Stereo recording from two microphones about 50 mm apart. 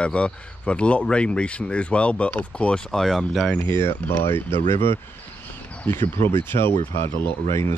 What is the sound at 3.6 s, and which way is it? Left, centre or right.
Speech, left.